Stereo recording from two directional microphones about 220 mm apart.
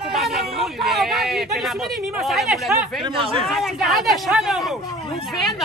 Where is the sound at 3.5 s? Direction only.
Centre (ahead or behind).